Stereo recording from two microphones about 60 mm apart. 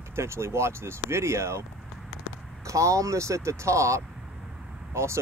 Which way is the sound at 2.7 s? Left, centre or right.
Right.